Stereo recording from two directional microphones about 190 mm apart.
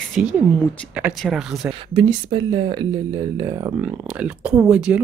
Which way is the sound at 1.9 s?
30° right (ahead or behind).